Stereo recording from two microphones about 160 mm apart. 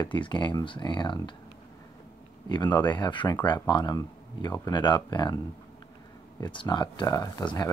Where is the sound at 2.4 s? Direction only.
25° left (ahead or behind).